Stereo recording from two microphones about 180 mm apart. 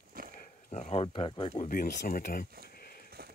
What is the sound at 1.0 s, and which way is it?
Speech, 30° left (ahead or behind).